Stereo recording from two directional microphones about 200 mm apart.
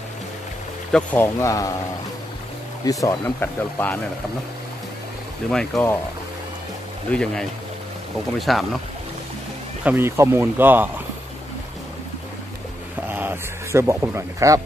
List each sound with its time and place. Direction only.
0.9 s speech: 10° left (ahead or behind)
2.8 s speech: 20° left (ahead or behind)
5.5 s speech: 5° left (ahead or behind)
7.1 s speech: 5° left (ahead or behind)
9.8 s speech: 10° right (ahead or behind)
13.1 s sheep: 10° right (ahead or behind)